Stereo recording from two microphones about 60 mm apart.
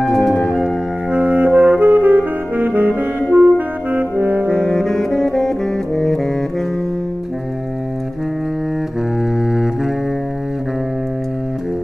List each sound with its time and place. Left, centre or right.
0.0 s organ: centre
1.1 s music: right
2.9 s saxophone: right
4.5 s saxophone: centre
9.4 s double bass: centre